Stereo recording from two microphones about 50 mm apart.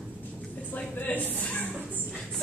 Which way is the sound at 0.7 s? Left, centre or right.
Left.